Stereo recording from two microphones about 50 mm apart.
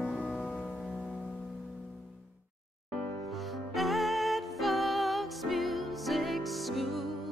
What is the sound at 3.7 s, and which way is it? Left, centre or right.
Music, centre.